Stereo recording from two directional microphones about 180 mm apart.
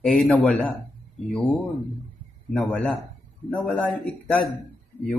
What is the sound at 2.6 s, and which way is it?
A man's voice, centre (ahead or behind).